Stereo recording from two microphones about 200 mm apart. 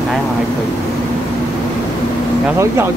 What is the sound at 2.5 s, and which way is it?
Speech, 15° right (ahead or behind).